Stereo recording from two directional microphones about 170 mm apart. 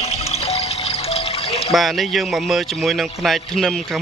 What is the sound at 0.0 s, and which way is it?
Music, 35° left (ahead or behind).